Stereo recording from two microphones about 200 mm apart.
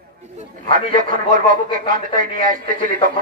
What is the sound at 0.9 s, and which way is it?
A man's voice, 45° right (ahead or behind).